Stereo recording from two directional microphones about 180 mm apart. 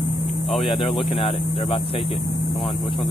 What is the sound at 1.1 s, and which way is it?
Speech, 30° left (ahead or behind).